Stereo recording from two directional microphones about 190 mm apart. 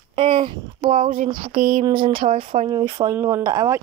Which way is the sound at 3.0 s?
15° right (ahead or behind).